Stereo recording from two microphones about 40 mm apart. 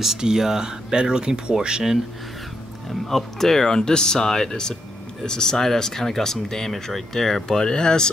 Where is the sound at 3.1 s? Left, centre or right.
Centre.